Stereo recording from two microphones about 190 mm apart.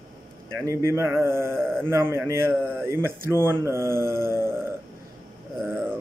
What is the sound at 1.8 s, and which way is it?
Speech, 10° right (ahead or behind).